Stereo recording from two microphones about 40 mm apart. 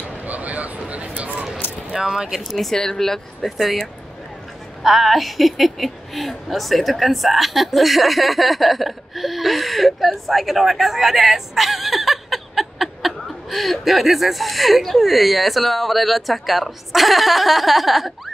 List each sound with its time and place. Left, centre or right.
0.0 s a sound: right
1.9 s speech: centre
2.5 s a woman's voice: centre
4.8 s a woman's voice: centre